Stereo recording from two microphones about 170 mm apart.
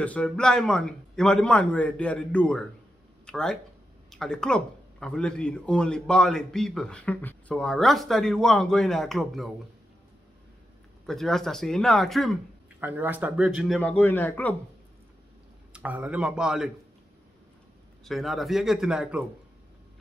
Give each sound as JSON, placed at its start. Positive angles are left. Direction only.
{"t": 0.0, "sound": "a man's voice", "side_deg": 5}
{"t": 11.1, "sound": "a man's voice", "side_deg": 0}
{"t": 12.8, "sound": "a man's voice", "side_deg": -10}
{"t": 13.7, "sound": "a man's voice", "side_deg": 10}
{"t": 15.7, "sound": "a man's voice", "side_deg": -10}
{"t": 18.0, "sound": "a man's voice", "side_deg": 0}